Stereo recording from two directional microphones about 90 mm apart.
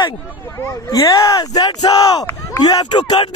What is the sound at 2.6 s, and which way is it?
Speech, 55° left (ahead or behind).